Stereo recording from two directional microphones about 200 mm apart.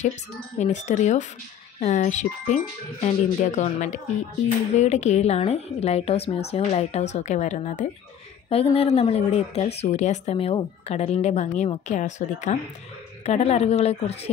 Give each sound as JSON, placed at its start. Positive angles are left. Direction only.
{"t": 0.6, "sound": "speech", "side_deg": 35}